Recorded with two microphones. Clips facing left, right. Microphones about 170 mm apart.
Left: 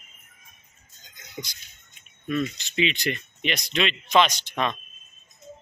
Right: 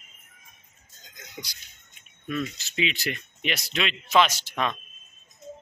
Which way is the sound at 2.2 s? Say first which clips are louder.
Left 4 dB; 5° right (ahead or behind).